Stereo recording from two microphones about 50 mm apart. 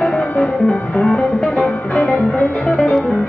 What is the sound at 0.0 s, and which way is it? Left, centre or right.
Music, centre.